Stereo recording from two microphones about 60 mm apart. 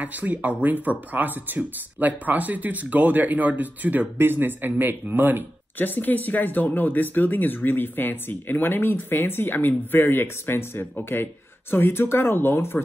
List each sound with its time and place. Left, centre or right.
0.0 s speech: right
5.8 s speech: left